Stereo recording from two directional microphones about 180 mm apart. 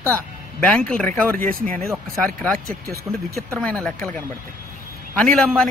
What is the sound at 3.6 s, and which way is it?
Speech, 5° left (ahead or behind).